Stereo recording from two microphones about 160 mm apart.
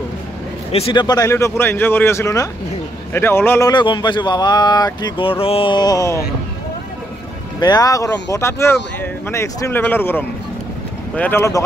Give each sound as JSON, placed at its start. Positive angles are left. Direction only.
{"t": 0.7, "sound": "a man's voice", "side_deg": 35}
{"t": 1.0, "sound": "speech", "side_deg": 20}
{"t": 3.7, "sound": "speech", "side_deg": 30}
{"t": 7.6, "sound": "speech", "side_deg": 25}